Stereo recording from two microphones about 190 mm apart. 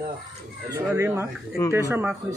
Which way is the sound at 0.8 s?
15° right (ahead or behind).